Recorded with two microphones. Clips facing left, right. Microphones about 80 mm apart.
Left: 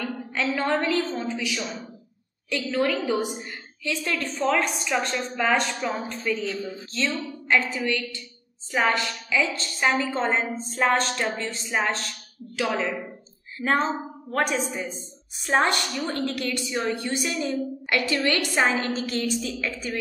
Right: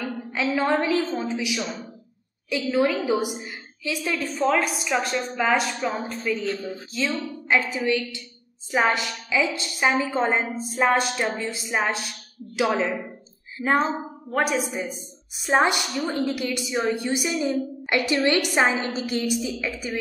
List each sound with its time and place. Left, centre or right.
0.0 s a woman's voice: centre